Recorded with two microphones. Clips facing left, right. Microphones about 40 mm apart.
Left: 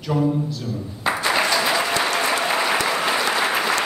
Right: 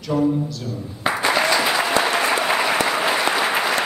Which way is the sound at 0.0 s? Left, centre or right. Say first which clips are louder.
Right 1 dB; centre.